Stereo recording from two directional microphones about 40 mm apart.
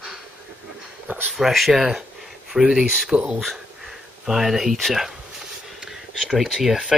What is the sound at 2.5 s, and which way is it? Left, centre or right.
Speech, centre.